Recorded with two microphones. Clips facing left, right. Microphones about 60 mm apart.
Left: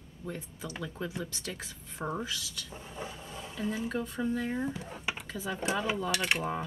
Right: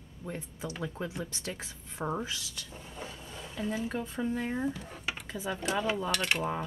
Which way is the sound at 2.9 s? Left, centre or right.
Centre.